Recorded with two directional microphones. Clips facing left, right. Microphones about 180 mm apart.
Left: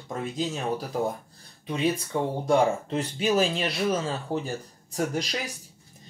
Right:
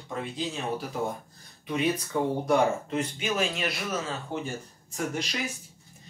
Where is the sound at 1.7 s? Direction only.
30° left (ahead or behind).